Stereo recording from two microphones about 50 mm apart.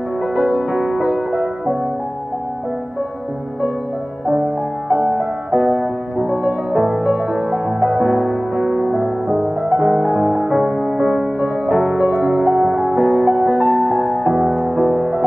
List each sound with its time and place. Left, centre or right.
0.4 s music: centre
4.8 s music: right
6.1 s music: centre
8.0 s music: centre